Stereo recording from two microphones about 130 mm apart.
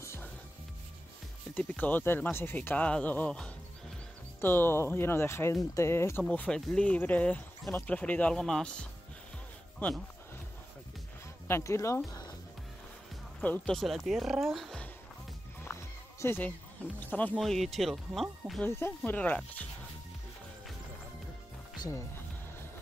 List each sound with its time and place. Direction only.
0.0 s music: 20° left (ahead or behind)
1.5 s speech: 10° left (ahead or behind)
11.4 s speech: 20° left (ahead or behind)
13.4 s speech: 10° left (ahead or behind)
15.6 s a sound: 20° left (ahead or behind)
17.0 s speech: 15° left (ahead or behind)
17.4 s speech: centre (ahead or behind)
18.6 s speech: 15° left (ahead or behind)
21.7 s music: 25° left (ahead or behind)